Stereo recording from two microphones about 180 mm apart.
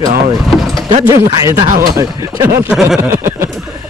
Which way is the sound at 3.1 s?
15° right (ahead or behind).